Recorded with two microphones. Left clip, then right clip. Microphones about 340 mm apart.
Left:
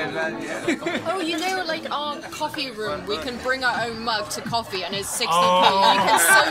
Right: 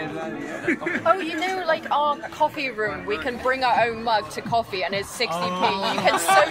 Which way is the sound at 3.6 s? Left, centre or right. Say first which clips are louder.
Right 6 dB; right.